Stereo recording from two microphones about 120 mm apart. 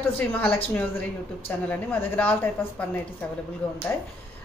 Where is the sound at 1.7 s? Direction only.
15° left (ahead or behind).